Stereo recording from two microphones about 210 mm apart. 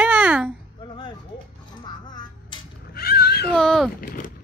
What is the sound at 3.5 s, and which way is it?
Speech, centre (ahead or behind).